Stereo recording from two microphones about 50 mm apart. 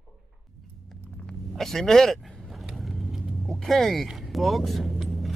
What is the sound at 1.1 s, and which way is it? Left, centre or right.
Vehicle, centre.